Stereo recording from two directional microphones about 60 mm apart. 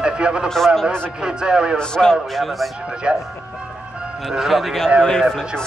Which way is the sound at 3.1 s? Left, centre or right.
Centre.